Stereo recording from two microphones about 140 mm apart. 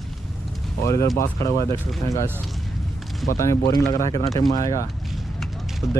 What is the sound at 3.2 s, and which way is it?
Speech, 20° left (ahead or behind).